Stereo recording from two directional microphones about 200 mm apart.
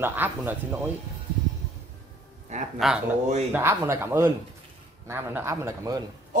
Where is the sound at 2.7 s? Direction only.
Centre (ahead or behind).